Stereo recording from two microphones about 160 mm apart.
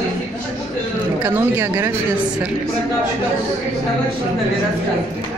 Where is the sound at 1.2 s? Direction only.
15° right (ahead or behind).